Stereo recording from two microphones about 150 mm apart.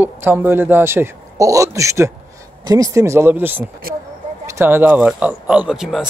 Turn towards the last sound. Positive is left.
turn(degrees=-5)  # may be behind; listen again after turning